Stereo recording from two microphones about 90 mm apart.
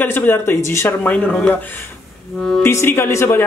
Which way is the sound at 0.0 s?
20° left (ahead or behind).